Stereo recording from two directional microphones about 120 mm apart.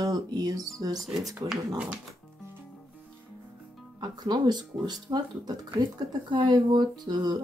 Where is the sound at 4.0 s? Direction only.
35° right (ahead or behind).